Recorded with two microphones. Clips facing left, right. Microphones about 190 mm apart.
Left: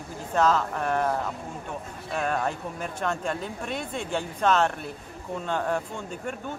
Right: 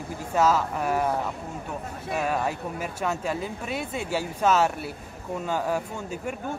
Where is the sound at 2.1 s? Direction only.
5° right (ahead or behind).